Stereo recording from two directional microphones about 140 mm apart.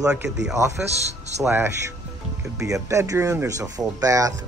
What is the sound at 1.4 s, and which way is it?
Speech, 15° right (ahead or behind).